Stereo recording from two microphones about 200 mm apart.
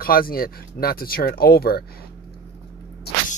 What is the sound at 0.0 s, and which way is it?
Speech, 45° left (ahead or behind).